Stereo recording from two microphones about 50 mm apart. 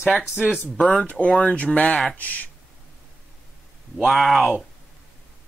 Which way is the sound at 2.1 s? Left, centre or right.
Left.